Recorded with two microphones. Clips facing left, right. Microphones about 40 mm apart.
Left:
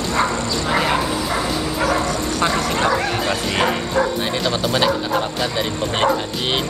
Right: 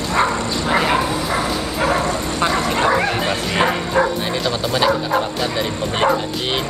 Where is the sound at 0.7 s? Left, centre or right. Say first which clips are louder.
Right 2 dB; centre.